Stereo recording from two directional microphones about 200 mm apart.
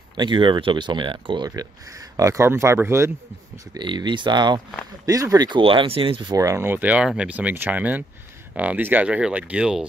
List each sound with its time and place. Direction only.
0.2 s speech: 25° right (ahead or behind)
3.7 s speech: 25° right (ahead or behind); by 9.8 s 5° right (ahead or behind)